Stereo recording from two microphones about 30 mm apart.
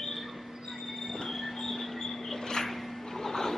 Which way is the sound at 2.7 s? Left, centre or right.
Centre.